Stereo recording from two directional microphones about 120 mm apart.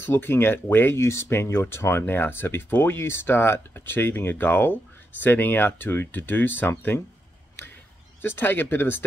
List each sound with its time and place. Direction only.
0.0 s speech: 20° left (ahead or behind)
8.2 s speech: 15° left (ahead or behind)